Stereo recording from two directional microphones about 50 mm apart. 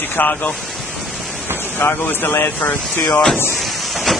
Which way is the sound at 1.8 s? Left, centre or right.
Left.